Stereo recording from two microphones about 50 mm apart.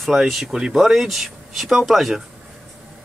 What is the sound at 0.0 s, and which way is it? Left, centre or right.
Speech, centre.